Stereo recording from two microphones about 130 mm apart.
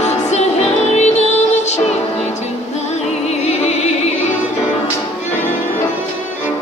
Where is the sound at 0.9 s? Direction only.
55° left (ahead or behind).